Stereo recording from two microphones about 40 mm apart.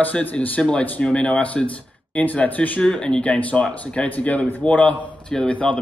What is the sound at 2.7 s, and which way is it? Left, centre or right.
Speech, left.